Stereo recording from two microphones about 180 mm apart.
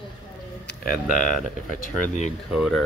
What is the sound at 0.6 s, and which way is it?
Speech, 55° left (ahead or behind).